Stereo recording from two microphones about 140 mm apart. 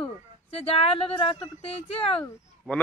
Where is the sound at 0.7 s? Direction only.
45° left (ahead or behind).